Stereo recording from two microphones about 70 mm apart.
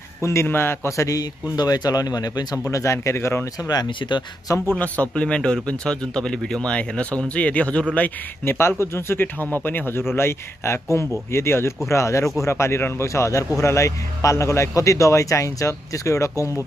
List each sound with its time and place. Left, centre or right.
0.2 s a man's voice: left
2.7 s a man's voice: left
3.6 s speech: left
4.7 s speech: left
8.5 s a man's voice: left